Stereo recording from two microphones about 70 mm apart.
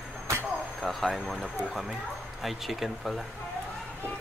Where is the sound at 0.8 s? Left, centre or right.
Centre.